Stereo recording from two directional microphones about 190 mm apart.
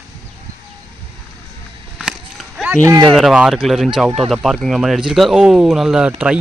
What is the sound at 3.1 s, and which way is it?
Speech, centre (ahead or behind).